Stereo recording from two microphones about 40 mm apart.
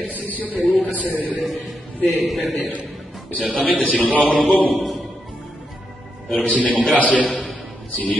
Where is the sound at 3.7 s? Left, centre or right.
Left.